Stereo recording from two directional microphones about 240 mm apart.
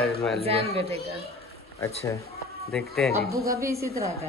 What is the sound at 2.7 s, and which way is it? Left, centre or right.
Speech, centre.